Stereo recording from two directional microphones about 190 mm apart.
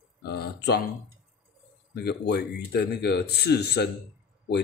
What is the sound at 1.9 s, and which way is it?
Speech, 55° left (ahead or behind).